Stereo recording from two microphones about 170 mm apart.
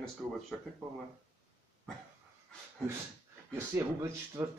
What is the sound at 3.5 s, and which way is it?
Speech, 20° right (ahead or behind).